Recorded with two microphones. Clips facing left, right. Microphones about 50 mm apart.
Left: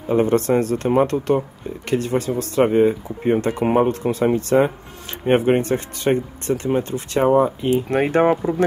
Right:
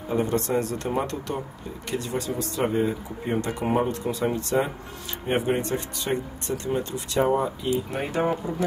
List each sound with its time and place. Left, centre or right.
0.1 s speech: left
7.9 s speech: left